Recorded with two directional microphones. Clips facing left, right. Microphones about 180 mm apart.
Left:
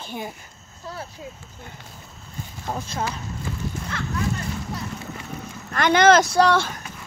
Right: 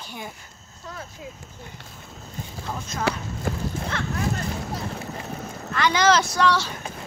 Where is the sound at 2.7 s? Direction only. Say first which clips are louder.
Left 4 dB; 40° left (ahead or behind).